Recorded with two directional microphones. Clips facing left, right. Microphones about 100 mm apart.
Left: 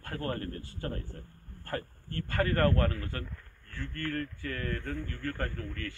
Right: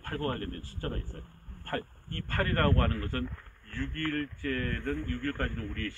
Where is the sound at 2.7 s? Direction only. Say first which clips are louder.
Even; 40° right (ahead or behind).